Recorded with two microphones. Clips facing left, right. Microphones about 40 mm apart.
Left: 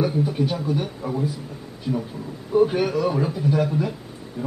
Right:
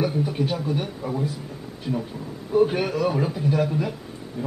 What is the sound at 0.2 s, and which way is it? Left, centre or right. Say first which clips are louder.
A man's voice: left 2 dB; centre.